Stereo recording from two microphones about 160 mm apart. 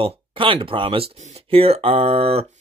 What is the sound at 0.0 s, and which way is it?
Speech, 35° right (ahead or behind).